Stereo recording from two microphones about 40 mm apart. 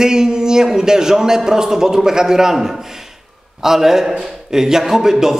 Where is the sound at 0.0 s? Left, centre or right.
Centre.